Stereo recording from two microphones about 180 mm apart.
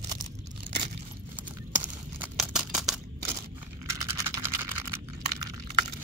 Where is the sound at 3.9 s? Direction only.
15° right (ahead or behind).